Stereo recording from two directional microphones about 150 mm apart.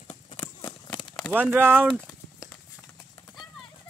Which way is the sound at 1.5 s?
15° right (ahead or behind).